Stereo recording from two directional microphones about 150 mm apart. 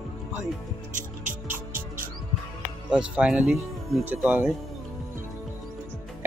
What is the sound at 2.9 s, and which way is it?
Speech, 5° right (ahead or behind).